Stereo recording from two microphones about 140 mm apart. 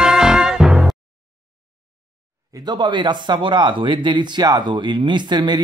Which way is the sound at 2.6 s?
35° right (ahead or behind).